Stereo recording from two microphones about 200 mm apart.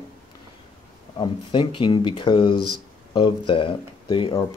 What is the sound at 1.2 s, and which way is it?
Speech, 25° left (ahead or behind).